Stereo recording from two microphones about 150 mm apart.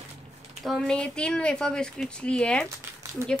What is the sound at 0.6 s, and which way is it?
A woman's voice, centre (ahead or behind).